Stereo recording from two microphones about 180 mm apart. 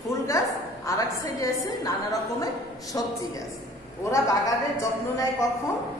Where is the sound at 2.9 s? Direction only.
20° left (ahead or behind).